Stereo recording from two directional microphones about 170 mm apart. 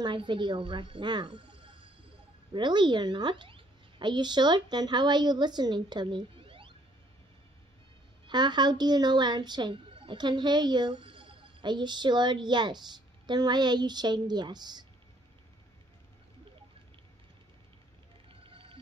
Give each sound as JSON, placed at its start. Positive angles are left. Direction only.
{"t": 0.0, "sound": "a woman's voice", "side_deg": -30}
{"t": 8.3, "sound": "a woman's voice", "side_deg": -25}
{"t": 18.3, "sound": "music", "side_deg": -30}